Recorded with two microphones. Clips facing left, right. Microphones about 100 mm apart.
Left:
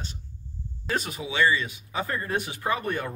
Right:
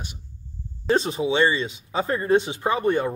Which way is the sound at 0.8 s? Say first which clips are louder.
Right 9 dB; 25° right (ahead or behind).